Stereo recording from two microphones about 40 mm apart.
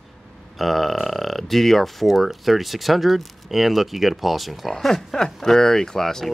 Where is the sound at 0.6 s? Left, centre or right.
Centre.